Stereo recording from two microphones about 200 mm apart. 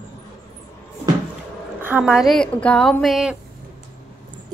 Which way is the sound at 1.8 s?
10° right (ahead or behind).